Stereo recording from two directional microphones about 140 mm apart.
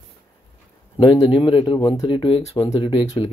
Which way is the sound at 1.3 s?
40° left (ahead or behind).